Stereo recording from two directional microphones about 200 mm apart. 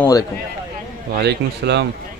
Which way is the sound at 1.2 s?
55° right (ahead or behind).